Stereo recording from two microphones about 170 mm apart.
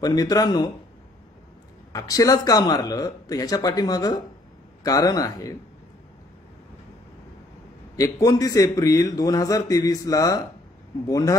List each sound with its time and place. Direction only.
0.0 s a man's voice: 20° left (ahead or behind)
1.9 s a man's voice: 20° left (ahead or behind)
7.9 s a man's voice: 20° left (ahead or behind)